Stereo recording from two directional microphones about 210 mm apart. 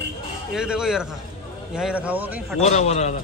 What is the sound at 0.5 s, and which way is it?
A man's voice, 5° right (ahead or behind).